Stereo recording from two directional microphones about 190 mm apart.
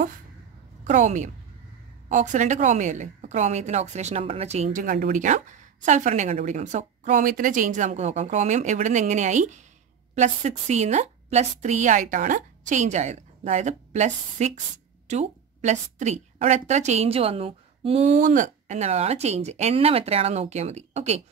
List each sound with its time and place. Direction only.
0.8 s a woman's voice: 40° right (ahead or behind)